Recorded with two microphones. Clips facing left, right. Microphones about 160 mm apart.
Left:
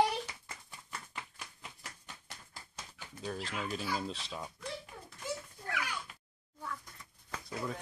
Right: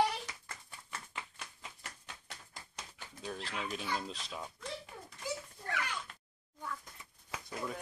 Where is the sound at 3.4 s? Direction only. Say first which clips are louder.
Even; centre (ahead or behind).